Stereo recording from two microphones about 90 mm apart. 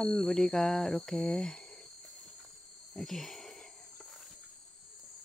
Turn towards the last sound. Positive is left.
turn(degrees=5)  # may be behind; listen again after turning